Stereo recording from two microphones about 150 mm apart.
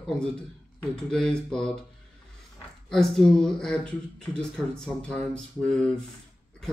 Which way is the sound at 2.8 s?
5° left (ahead or behind).